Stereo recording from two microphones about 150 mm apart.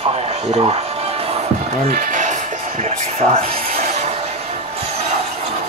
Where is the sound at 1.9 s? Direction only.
60° right (ahead or behind); by 3.6 s 40° right (ahead or behind).